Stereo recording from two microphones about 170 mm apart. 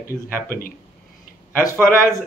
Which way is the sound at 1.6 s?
55° left (ahead or behind).